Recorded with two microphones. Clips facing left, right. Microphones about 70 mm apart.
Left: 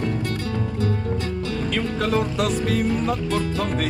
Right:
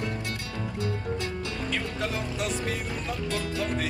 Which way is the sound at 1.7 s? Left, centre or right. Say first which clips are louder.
Left 9 dB; left.